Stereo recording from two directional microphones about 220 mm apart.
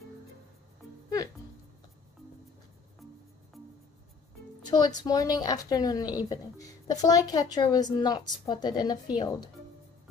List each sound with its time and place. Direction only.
4.6 s a woman's voice: 20° left (ahead or behind)